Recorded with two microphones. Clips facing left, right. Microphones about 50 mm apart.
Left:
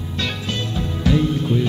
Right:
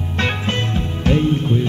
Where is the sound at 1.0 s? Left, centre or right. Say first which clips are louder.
Right 2 dB; right.